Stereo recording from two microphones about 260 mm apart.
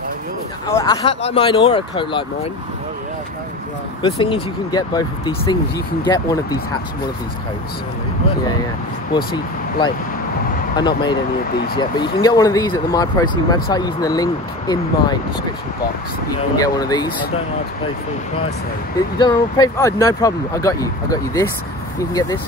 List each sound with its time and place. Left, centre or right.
0.7 s speech: centre
1.0 s speech: left
4.0 s speech: centre
9.1 s speech: centre
16.5 s speech: centre
19.1 s speech: centre